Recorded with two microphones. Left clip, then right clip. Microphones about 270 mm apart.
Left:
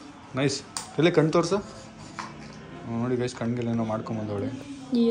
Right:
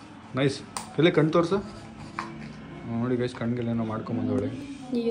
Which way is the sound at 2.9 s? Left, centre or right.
Centre.